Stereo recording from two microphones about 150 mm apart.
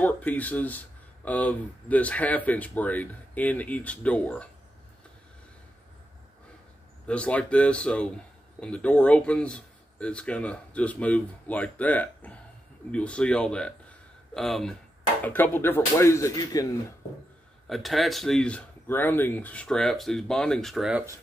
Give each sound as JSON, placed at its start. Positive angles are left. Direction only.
{"t": 0.0, "sound": "speech", "side_deg": 10}
{"t": 7.1, "sound": "speech", "side_deg": 10}
{"t": 17.6, "sound": "speech", "side_deg": 0}
{"t": 20.9, "sound": "speech", "side_deg": -20}